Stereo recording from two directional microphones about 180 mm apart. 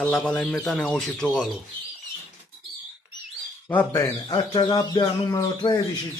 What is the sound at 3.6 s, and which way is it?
Speech, 10° left (ahead or behind).